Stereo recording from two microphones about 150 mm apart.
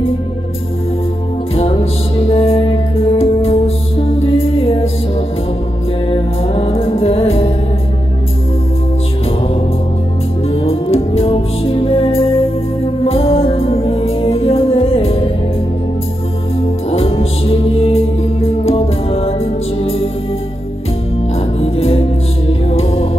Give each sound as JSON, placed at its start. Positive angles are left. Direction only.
{"t": 1.5, "sound": "music", "side_deg": 40}
{"t": 6.0, "sound": "music", "side_deg": 40}
{"t": 10.5, "sound": "music", "side_deg": 40}
{"t": 16.9, "sound": "music", "side_deg": 40}
{"t": 21.5, "sound": "music", "side_deg": 40}